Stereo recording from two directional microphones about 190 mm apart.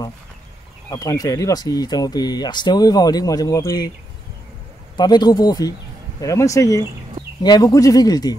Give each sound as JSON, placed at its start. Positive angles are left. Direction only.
{"t": 0.8, "sound": "speech", "side_deg": 20}
{"t": 4.9, "sound": "speech", "side_deg": 20}